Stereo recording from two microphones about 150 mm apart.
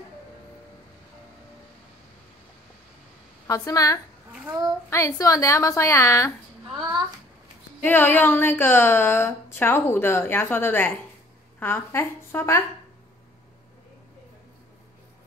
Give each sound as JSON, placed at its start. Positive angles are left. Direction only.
{"t": 3.4, "sound": "a woman's voice", "side_deg": 25}
{"t": 6.7, "sound": "a sound", "side_deg": -30}
{"t": 7.8, "sound": "a woman's voice", "side_deg": 15}